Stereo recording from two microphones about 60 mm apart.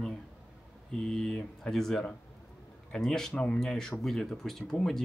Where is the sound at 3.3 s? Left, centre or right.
Left.